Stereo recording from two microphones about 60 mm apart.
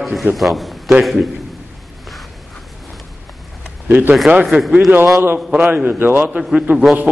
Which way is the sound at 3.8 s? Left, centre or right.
Right.